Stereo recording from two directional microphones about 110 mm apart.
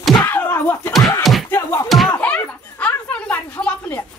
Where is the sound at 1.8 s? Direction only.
Centre (ahead or behind).